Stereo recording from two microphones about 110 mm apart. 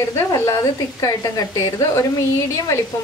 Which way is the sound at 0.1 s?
30° left (ahead or behind).